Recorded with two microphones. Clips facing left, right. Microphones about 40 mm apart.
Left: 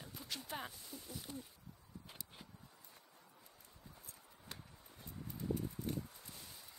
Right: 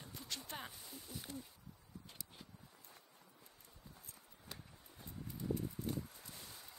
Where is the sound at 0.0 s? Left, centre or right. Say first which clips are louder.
Left 1 dB; centre.